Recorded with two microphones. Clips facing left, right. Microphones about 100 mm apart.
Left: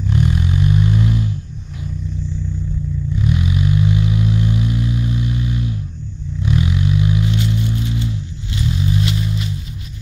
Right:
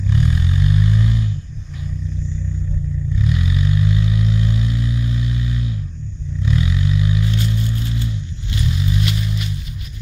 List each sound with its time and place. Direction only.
0.2 s vehicle: 20° left (ahead or behind)
0.6 s vehicle: 55° left (ahead or behind)
3.2 s vehicle: 20° left (ahead or behind)
6.4 s vehicle: 15° left (ahead or behind)
8.7 s a sound: 25° left (ahead or behind)